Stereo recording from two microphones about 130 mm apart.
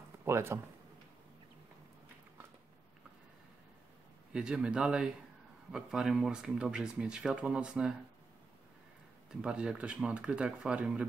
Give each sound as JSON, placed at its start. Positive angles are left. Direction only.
{"t": 0.2, "sound": "speech", "side_deg": -20}
{"t": 4.3, "sound": "speech", "side_deg": -5}
{"t": 9.3, "sound": "speech", "side_deg": -5}